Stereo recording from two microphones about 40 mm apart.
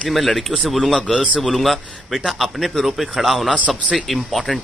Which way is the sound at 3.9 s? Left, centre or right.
Centre.